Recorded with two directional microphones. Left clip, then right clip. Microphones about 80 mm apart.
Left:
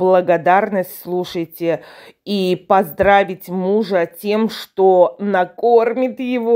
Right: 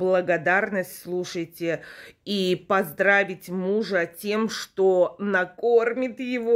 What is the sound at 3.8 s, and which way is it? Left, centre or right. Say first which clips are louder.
Speech: left 7 dB; left.